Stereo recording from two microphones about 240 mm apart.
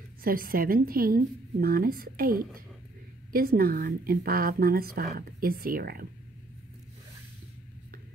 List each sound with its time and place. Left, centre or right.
0.2 s speech: right